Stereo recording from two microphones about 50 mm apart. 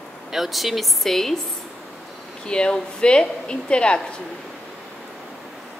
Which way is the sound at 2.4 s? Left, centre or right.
Centre.